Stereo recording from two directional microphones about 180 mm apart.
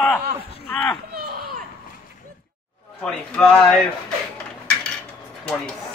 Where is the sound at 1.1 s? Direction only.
55° right (ahead or behind).